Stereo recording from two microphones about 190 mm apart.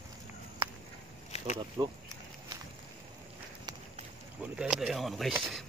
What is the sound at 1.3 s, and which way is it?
Insect, 35° left (ahead or behind).